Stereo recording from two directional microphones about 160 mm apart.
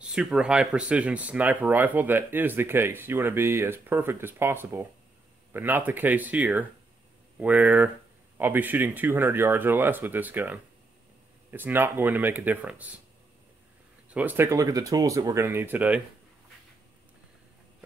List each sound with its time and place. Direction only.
0.0 s speech: 5° right (ahead or behind)
14.1 s speech: 10° right (ahead or behind)